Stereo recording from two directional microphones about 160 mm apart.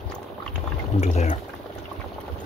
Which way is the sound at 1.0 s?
45° left (ahead or behind).